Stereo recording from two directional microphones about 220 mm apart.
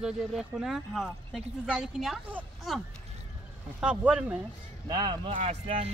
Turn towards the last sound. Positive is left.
turn(degrees=-30)  # may be behind; listen again after turning